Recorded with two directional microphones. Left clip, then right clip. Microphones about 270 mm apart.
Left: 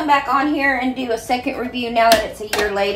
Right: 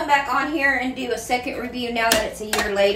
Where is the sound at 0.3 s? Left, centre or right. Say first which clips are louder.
Left 3 dB; centre.